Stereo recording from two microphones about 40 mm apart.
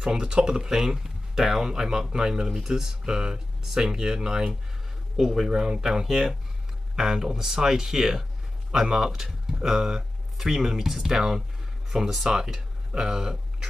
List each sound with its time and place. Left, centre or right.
0.0 s speech: right
5.1 s speech: centre